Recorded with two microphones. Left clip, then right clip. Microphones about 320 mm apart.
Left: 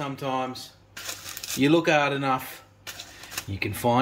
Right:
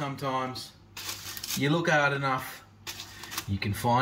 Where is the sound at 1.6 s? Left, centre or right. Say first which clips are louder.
Left 4 dB; left.